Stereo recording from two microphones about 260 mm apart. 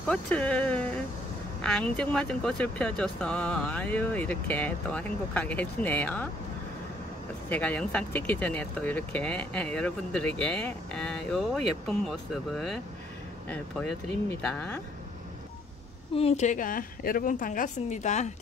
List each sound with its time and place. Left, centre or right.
0.1 s speech: centre
7.4 s speech: centre
14.4 s speech: centre
16.2 s a woman's voice: left